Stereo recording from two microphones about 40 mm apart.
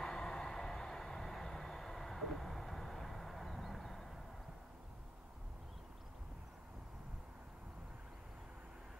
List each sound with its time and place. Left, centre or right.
0.0 s vehicle: centre
0.5 s train: centre